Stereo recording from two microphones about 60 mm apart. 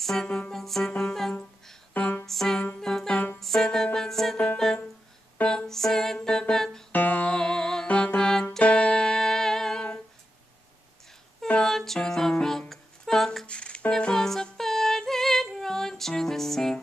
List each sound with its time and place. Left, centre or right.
0.0 s music: centre
2.0 s music: left
2.2 s music: centre
5.4 s music: centre
5.7 s music: centre
6.9 s music: left
7.3 s music: centre
11.6 s music: centre
13.5 s music: centre